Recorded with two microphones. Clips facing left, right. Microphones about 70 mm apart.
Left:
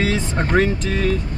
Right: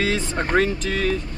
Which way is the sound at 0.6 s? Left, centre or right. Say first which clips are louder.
Left 2 dB; centre.